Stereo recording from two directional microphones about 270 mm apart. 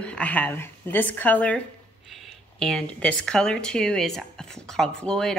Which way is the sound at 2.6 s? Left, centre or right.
Centre.